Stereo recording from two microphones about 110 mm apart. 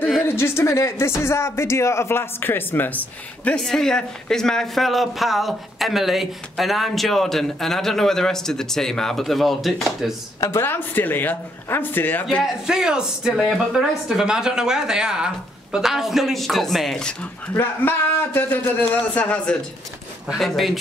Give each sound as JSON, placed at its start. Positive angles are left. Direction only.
{"t": 0.2, "sound": "speech", "side_deg": 20}
{"t": 3.4, "sound": "speech", "side_deg": 5}
{"t": 10.4, "sound": "speech", "side_deg": 20}
{"t": 12.6, "sound": "speech", "side_deg": -5}
{"t": 17.6, "sound": "speech", "side_deg": 20}